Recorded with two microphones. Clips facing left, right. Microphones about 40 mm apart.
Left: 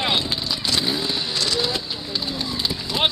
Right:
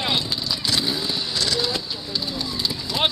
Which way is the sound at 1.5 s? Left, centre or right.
Centre.